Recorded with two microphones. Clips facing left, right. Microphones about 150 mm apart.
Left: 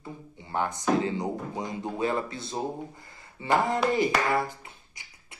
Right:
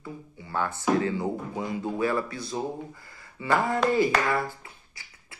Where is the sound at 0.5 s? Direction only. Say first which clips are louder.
Even; 20° left (ahead or behind).